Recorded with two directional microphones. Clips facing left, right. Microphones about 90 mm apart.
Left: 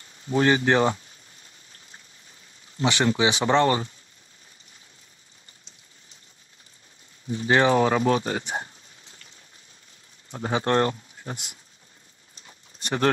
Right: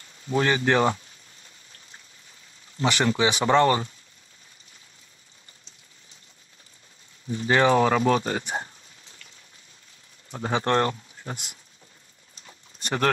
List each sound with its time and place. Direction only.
0.0 s speech: 30° left (ahead or behind)
2.8 s speech: 20° left (ahead or behind)
7.2 s speech: 25° left (ahead or behind)
10.4 s speech: 25° left (ahead or behind)
12.8 s speech: 20° left (ahead or behind)